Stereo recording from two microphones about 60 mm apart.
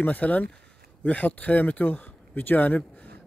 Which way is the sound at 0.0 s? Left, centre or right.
Left.